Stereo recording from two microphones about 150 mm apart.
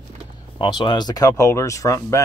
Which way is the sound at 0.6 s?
30° left (ahead or behind).